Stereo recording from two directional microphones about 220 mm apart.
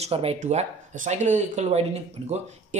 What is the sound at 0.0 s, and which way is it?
Speech, 25° right (ahead or behind).